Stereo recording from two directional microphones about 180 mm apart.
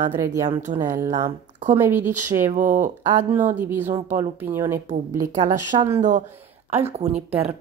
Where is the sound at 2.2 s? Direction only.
45° right (ahead or behind).